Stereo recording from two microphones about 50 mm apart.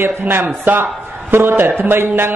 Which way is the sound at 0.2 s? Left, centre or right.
Right.